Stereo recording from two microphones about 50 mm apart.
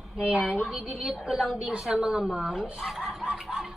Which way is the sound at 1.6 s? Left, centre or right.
Centre.